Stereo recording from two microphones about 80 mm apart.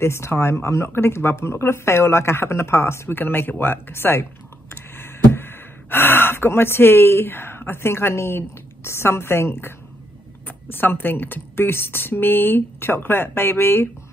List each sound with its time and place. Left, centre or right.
0.0 s speech: left